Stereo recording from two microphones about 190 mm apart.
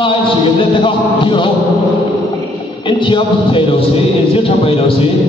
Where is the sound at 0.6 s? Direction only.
25° left (ahead or behind).